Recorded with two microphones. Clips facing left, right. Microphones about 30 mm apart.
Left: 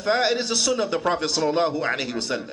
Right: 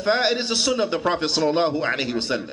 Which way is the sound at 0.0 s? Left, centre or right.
Right.